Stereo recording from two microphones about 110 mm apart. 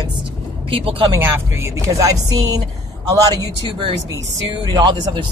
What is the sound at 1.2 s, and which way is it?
Speech, 25° right (ahead or behind).